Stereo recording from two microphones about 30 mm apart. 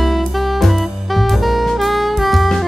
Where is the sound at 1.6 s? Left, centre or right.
Centre.